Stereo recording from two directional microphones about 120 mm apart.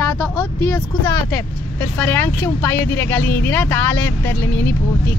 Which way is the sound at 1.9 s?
20° left (ahead or behind).